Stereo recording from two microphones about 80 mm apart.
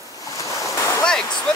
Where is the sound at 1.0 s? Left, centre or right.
Centre.